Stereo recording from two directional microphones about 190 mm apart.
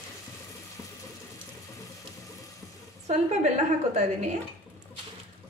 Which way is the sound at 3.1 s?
35° right (ahead or behind).